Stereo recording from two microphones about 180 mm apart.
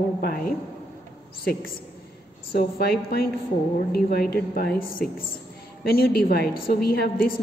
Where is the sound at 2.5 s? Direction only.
60° left (ahead or behind).